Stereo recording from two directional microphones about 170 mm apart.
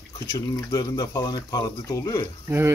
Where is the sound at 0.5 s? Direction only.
20° left (ahead or behind).